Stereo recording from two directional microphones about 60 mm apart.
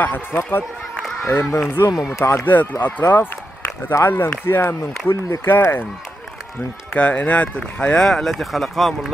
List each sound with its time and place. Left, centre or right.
0.0 s speech: left
2.4 s speech: left
6.9 s speech: left; by 9.1 s centre